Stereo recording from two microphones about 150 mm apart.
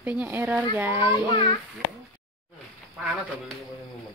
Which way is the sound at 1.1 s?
30° left (ahead or behind).